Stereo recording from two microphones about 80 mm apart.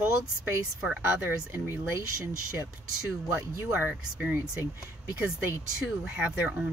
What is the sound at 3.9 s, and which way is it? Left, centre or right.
Speech, centre.